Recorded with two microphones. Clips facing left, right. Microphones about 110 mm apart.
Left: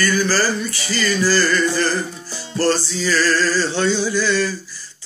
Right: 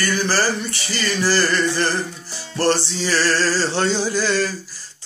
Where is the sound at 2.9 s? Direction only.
30° right (ahead or behind).